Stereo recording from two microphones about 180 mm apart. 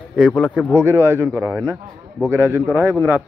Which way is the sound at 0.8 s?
10° right (ahead or behind).